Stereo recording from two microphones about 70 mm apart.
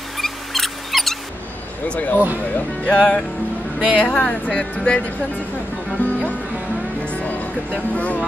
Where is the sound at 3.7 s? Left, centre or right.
Centre.